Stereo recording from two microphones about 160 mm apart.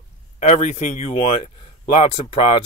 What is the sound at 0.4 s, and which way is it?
Speech, 45° left (ahead or behind).